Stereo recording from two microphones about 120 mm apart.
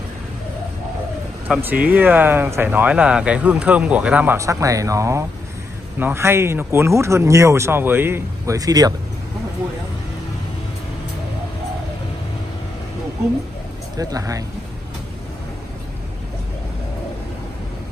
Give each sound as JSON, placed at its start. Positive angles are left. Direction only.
{"t": 1.6, "sound": "speech", "side_deg": -15}
{"t": 4.4, "sound": "speech", "side_deg": -25}
{"t": 13.9, "sound": "speech", "side_deg": -30}